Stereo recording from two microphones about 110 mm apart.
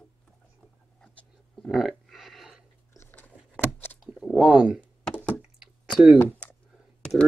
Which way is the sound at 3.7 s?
15° left (ahead or behind).